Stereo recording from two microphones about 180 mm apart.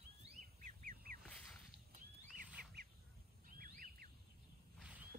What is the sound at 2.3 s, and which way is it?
Bird, 45° right (ahead or behind).